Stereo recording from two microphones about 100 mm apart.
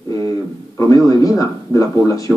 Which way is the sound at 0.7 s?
35° left (ahead or behind).